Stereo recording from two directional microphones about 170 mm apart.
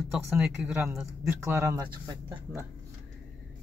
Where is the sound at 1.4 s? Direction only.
15° right (ahead or behind).